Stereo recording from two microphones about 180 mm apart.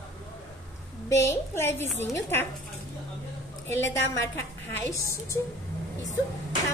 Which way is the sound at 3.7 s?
15° left (ahead or behind).